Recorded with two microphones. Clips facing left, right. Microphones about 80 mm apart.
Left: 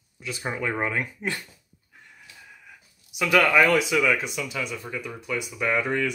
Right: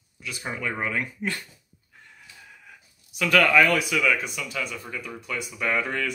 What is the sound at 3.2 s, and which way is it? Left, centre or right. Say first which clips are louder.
Speech: even; centre.